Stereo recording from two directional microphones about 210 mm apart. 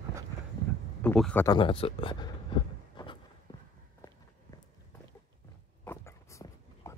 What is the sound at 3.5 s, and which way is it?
Walk, 15° left (ahead or behind).